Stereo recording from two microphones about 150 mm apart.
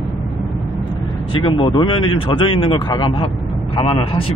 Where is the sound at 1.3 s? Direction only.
35° left (ahead or behind).